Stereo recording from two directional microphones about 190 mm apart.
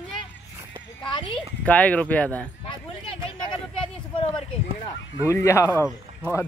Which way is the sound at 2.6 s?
25° left (ahead or behind).